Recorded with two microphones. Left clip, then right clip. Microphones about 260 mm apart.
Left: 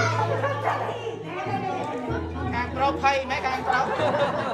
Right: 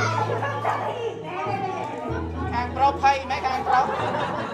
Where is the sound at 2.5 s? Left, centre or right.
Right.